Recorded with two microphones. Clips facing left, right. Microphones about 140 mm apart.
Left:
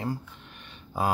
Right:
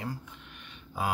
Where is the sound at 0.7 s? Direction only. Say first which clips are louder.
Left 4 dB; 35° left (ahead or behind).